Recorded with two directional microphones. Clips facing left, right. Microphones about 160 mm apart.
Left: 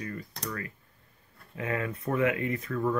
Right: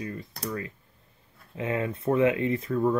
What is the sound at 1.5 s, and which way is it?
Speech, 25° right (ahead or behind).